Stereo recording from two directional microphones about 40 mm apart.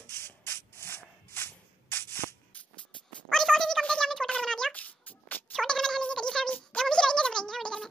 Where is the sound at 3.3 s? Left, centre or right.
Centre.